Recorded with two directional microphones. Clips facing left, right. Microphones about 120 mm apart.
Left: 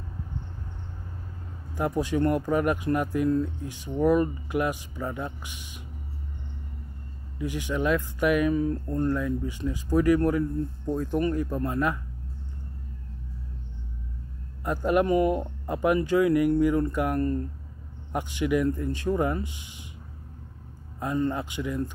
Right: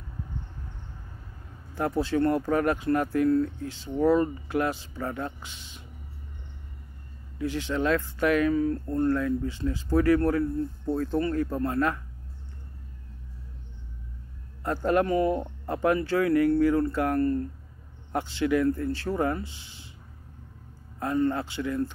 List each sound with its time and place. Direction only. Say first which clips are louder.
1.8 s speech: even; 15° left (ahead or behind)
7.3 s speech: right 1 dB; 15° left (ahead or behind)
14.6 s speech: even; 15° left (ahead or behind)
21.0 s speech: right 1 dB; 15° left (ahead or behind)